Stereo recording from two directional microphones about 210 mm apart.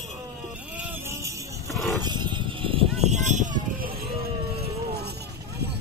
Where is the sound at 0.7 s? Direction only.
5° right (ahead or behind).